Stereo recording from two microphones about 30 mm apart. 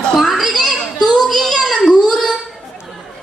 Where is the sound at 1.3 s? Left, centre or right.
Centre.